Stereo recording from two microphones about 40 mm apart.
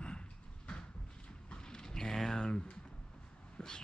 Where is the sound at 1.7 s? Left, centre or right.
Centre.